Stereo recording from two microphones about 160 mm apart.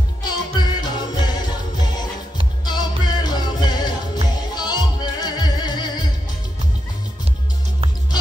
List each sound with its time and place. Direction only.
0.2 s music: 25° left (ahead or behind)
2.6 s music: 25° left (ahead or behind)